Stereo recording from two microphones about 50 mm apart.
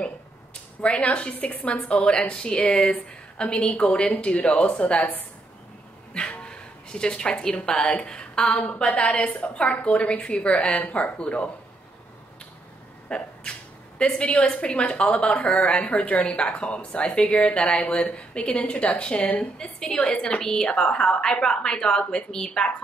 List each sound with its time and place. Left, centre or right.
0.8 s a woman's voice: left
6.1 s a woman's voice: left
13.1 s a sound: left
14.6 s a woman's voice: left
19.2 s a woman's voice: left
19.6 s a woman's voice: left